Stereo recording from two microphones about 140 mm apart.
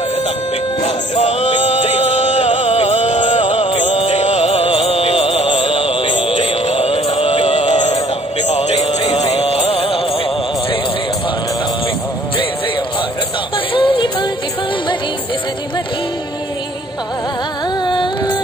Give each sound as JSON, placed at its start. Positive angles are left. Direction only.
{"t": 0.8, "sound": "music", "side_deg": 50}
{"t": 3.8, "sound": "music", "side_deg": 55}
{"t": 8.8, "sound": "music", "side_deg": 30}
{"t": 9.2, "sound": "music", "side_deg": 50}
{"t": 13.7, "sound": "music", "side_deg": 35}
{"t": 17.8, "sound": "music", "side_deg": 35}